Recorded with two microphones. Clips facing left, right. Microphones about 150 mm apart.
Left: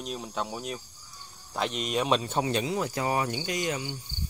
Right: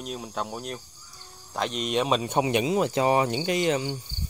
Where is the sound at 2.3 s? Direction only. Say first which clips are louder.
Right 4 dB; 15° right (ahead or behind).